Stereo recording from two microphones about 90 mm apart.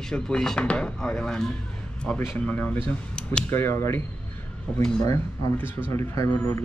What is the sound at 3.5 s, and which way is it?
Speech, 30° left (ahead or behind).